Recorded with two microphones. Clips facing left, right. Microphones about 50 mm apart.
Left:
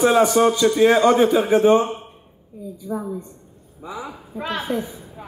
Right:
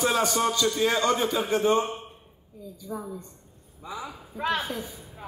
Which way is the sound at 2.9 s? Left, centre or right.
Left.